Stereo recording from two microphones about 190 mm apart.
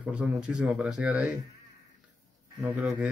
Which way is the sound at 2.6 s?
5° right (ahead or behind).